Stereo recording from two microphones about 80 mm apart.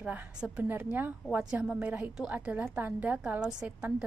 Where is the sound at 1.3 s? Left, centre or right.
Centre.